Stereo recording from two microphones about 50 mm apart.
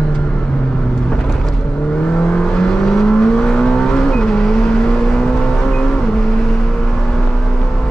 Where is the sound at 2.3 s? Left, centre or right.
Centre.